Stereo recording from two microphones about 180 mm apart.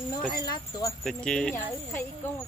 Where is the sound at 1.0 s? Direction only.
5° left (ahead or behind).